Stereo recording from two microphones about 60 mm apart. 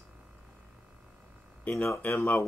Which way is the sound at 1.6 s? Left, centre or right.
Left.